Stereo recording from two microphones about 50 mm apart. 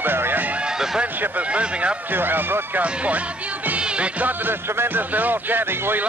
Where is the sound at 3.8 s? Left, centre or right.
Centre.